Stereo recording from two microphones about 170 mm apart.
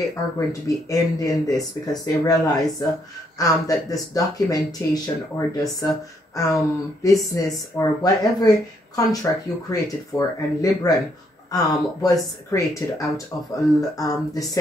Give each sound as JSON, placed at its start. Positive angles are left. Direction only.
{"t": 0.1, "sound": "a woman's voice", "side_deg": 20}